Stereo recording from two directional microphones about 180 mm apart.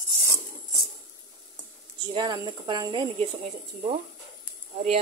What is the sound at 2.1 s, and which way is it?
A woman's voice, 25° right (ahead or behind).